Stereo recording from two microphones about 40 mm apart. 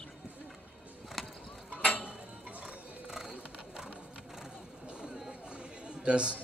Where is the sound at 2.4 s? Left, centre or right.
Right.